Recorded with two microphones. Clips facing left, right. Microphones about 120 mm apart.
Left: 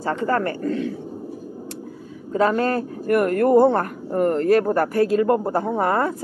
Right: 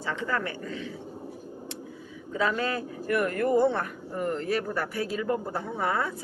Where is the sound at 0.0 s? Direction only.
45° left (ahead or behind).